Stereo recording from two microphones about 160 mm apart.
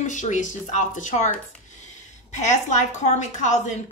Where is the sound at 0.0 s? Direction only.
50° left (ahead or behind).